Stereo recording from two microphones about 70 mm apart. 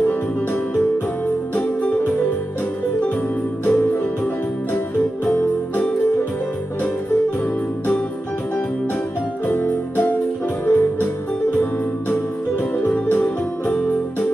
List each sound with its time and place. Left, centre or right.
1.5 s music: left
3.6 s music: left
5.2 s music: left
9.5 s music: left
12.7 s music: left